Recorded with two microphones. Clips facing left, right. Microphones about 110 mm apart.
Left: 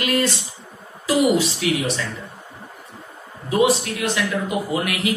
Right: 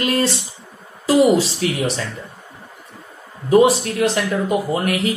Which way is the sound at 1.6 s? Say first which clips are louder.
Even; 40° right (ahead or behind).